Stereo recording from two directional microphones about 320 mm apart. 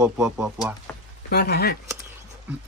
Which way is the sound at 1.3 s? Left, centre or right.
Left.